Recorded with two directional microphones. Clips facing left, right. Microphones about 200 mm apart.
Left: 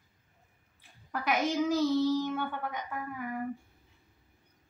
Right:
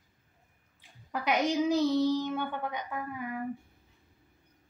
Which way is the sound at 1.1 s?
15° right (ahead or behind).